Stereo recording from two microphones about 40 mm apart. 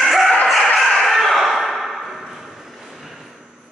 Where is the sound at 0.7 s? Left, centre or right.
Centre.